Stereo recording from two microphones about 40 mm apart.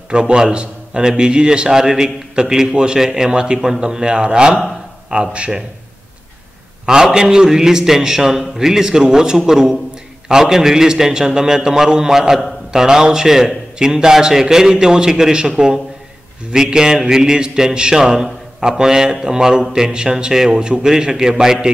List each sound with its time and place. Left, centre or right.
0.1 s a man's voice: right
3.5 s a man's voice: centre
3.8 s a man's voice: right
6.9 s a man's voice: centre